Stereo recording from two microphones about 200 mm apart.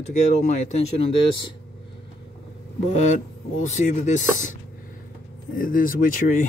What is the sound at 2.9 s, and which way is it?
Speech, 35° left (ahead or behind).